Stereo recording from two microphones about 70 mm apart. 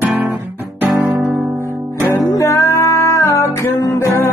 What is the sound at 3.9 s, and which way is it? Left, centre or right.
Music, left.